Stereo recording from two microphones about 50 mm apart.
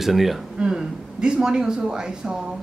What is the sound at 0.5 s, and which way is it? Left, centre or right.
Speech, centre.